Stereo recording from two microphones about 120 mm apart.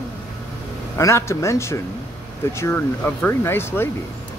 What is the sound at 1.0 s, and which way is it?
Speech, 25° left (ahead or behind).